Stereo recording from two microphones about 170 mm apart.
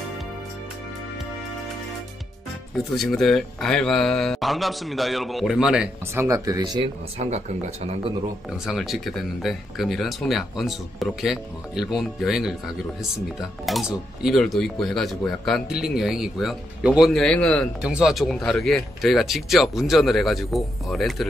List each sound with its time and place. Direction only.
3.0 s speech: centre (ahead or behind)
6.1 s speech: 20° right (ahead or behind); by 8.1 s 40° right (ahead or behind)
8.5 s speech: centre (ahead or behind)
13.7 s speech: centre (ahead or behind)